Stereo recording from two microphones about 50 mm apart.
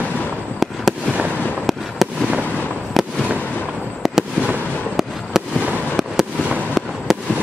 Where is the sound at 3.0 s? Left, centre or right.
Centre.